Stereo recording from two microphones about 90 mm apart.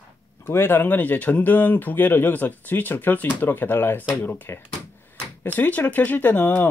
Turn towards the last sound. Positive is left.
turn(degrees=20)  # may be behind; listen again after turning